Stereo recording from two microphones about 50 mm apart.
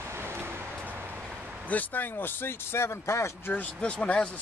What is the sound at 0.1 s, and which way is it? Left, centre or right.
Vehicle, right.